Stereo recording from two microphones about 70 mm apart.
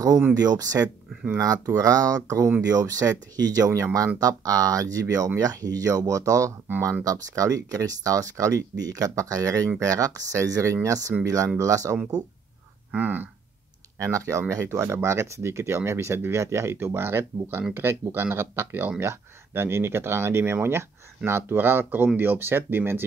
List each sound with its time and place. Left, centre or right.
0.3 s speech: right
12.9 s speech: right
13.9 s speech: right